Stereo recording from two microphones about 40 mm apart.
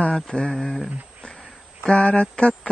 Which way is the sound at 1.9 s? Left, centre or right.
Left.